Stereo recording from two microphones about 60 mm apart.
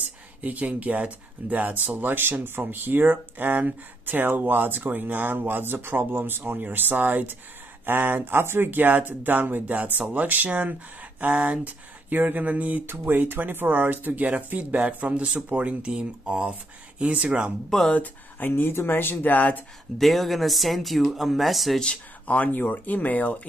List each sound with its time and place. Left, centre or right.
0.4 s speech: right
17.6 s speech: centre
17.9 s speech: left
18.5 s speech: left
20.0 s speech: centre
21.8 s speech: left